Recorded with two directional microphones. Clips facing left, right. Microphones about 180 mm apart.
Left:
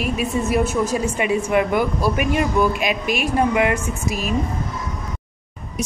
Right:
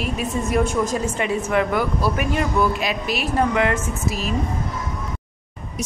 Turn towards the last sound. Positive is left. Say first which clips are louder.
# left 1 dB
turn(degrees=15)  # may be behind; listen again after turning